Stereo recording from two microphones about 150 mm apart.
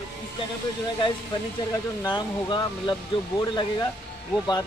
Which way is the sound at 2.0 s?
30° left (ahead or behind).